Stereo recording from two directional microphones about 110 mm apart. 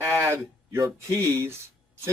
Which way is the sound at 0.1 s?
25° right (ahead or behind).